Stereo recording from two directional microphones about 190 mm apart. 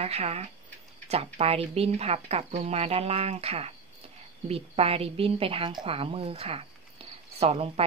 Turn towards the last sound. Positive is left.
turn(degrees=-30)  # may be behind; listen again after turning